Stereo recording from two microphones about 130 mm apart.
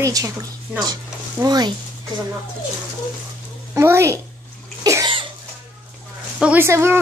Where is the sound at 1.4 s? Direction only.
30° right (ahead or behind).